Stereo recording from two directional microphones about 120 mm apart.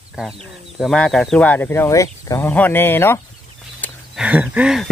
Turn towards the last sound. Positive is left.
turn(degrees=-10)  # may be behind; listen again after turning